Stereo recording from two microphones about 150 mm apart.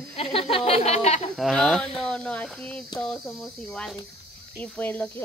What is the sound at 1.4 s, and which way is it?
Speech, centre (ahead or behind).